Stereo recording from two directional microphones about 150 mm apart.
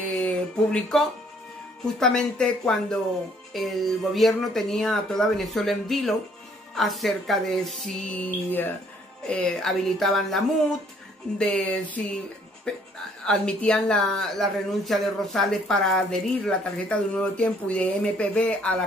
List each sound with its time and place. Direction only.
0.0 s a sound: 10° left (ahead or behind)
2.0 s speech: 5° left (ahead or behind)
13.2 s speech: 5° left (ahead or behind)